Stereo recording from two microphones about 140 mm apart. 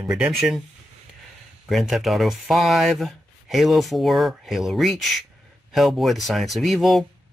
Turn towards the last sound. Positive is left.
turn(degrees=0)  # may be behind; listen again after turning